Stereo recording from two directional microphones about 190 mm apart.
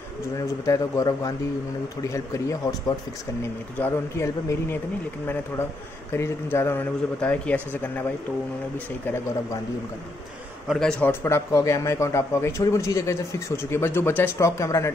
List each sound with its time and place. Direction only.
0.7 s a man's voice: 15° left (ahead or behind)
3.7 s a man's voice: 10° left (ahead or behind)
6.1 s a man's voice: 15° left (ahead or behind)
10.7 s a man's voice: 5° left (ahead or behind)